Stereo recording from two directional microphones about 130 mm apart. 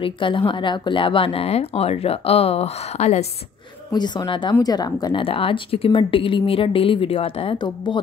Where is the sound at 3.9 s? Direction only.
30° left (ahead or behind).